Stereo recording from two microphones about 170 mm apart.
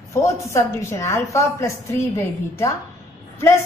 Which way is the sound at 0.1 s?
15° left (ahead or behind).